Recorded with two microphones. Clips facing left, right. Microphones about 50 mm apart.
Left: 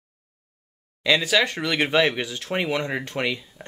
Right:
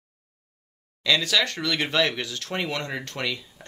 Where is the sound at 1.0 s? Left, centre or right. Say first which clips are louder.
Left 3 dB; centre.